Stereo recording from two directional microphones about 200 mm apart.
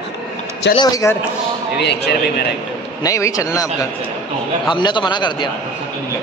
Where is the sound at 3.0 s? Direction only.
15° left (ahead or behind).